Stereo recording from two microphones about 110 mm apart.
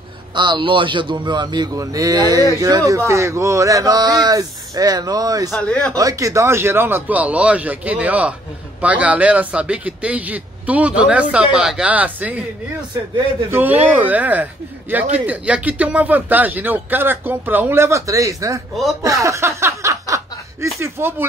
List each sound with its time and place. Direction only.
0.3 s a man's voice: 45° right (ahead or behind)
5.6 s speech: 10° left (ahead or behind)
5.9 s speech: 30° right (ahead or behind); by 12.4 s 15° right (ahead or behind)
13.5 s speech: 15° right (ahead or behind)
19.0 s a sound: 30° right (ahead or behind)
20.8 s speech: 20° right (ahead or behind)